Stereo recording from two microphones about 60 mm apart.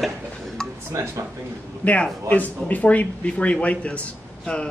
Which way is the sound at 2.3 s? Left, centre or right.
Left.